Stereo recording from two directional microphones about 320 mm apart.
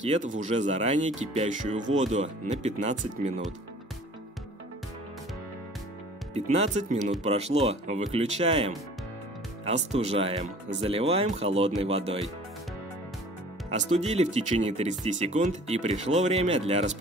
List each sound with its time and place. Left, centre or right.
0.0 s speech: right
6.3 s speech: right
13.7 s speech: right